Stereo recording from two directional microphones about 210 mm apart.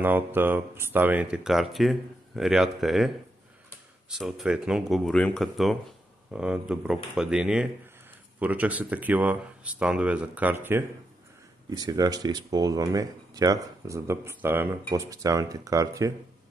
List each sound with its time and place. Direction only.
0.0 s speech: 10° right (ahead or behind)
4.1 s speech: centre (ahead or behind)